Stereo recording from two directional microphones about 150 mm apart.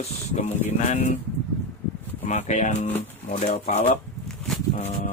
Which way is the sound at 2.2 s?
50° left (ahead or behind).